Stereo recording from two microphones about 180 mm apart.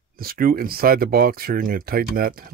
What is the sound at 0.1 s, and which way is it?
Speech, 55° right (ahead or behind).